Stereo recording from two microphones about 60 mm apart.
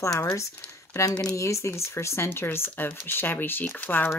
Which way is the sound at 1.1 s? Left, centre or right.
Centre.